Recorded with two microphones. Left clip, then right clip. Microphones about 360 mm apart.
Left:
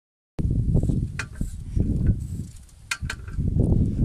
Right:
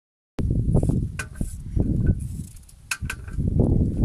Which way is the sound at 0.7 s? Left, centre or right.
Right.